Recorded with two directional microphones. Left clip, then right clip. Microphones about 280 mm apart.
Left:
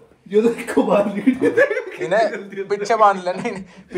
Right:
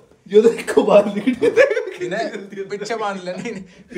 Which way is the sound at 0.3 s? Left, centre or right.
Right.